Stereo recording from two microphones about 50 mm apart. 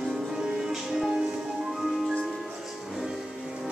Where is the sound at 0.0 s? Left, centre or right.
Centre.